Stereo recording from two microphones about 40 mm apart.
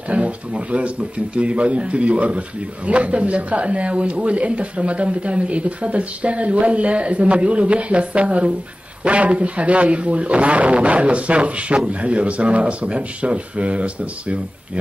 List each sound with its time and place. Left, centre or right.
0.1 s speech: right